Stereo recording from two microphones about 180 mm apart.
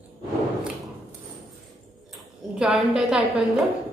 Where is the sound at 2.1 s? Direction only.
5° right (ahead or behind).